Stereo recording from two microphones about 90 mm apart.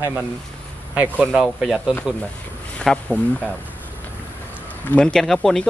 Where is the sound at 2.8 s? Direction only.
10° left (ahead or behind).